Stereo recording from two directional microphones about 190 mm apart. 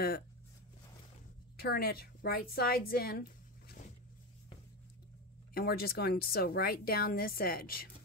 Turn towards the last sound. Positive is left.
turn(degrees=50)  # may be behind; listen again after turning